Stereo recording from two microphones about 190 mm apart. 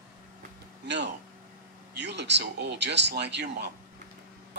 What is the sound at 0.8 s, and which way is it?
Speech, 65° right (ahead or behind).